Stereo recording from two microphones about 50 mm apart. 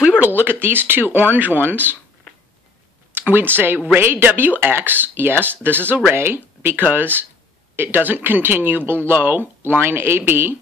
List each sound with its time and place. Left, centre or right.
0.4 s speech: right
3.2 s a woman's voice: right
6.8 s speech: right
9.8 s speech: right